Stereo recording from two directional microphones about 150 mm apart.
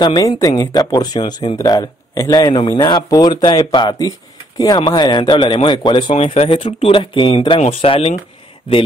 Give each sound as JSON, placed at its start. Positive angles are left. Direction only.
{"t": 0.0, "sound": "a man's voice", "side_deg": 25}